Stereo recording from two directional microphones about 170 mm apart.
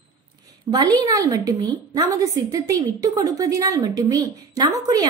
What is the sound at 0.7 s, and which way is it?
A woman's voice, 25° right (ahead or behind).